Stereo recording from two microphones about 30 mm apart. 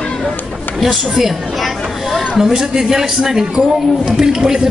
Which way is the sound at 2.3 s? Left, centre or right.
Right.